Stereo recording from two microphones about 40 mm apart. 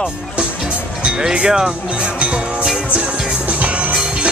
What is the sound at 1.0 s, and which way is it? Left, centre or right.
Speech, centre.